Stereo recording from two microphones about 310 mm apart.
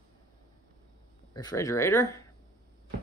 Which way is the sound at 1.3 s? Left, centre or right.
Centre.